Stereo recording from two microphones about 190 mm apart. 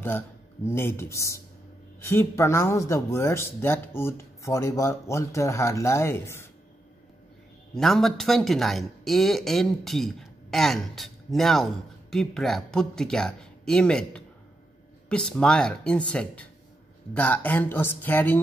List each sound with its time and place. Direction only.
0.7 s speech: 10° left (ahead or behind)
7.7 s speech: centre (ahead or behind)